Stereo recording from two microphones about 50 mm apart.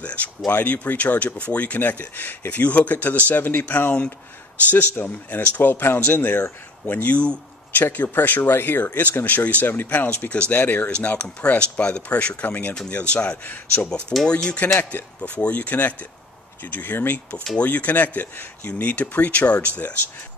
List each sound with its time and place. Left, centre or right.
0.0 s a sound: left
0.5 s speech: left
10.3 s speech: left
10.9 s speech: left
12.4 s speech: left
12.9 s speech: left
18.7 s speech: left